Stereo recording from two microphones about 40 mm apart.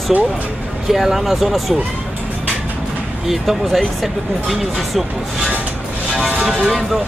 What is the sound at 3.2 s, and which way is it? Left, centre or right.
Speech, centre.